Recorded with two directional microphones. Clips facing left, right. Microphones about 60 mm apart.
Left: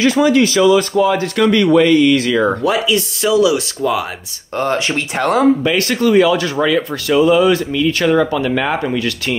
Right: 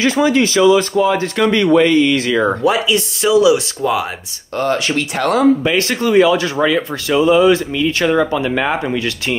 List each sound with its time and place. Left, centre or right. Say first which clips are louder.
0.0 s speech: left 2 dB; right
4.6 s speech: even; left
5.6 s speech: left 1 dB; right